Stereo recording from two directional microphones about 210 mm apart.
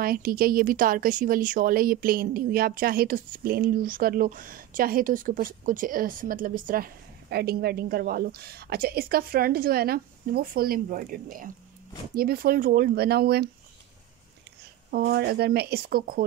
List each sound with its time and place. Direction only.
0.0 s a woman's voice: 45° right (ahead or behind)
14.9 s a woman's voice: 45° right (ahead or behind)